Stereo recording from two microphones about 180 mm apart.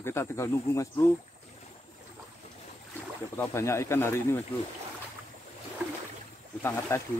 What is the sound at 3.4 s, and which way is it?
Speech, 15° left (ahead or behind).